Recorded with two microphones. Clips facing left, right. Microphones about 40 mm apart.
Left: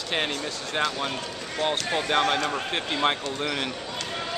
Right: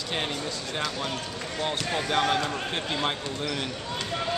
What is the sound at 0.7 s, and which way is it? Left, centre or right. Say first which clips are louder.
Speech: left 5 dB; centre.